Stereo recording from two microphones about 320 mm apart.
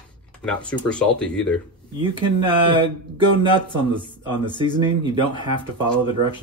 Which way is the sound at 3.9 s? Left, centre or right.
Centre.